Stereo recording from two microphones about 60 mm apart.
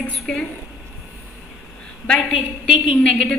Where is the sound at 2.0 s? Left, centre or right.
Centre.